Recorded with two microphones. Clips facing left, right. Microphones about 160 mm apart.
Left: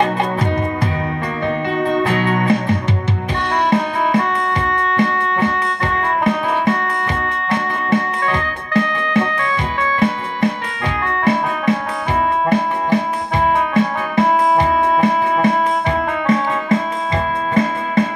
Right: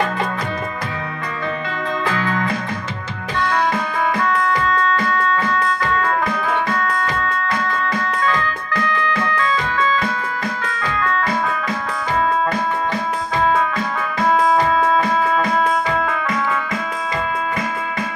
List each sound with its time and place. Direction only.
2.0 s music: 25° left (ahead or behind)
4.6 s music: 25° left (ahead or behind)
7.9 s music: 25° left (ahead or behind)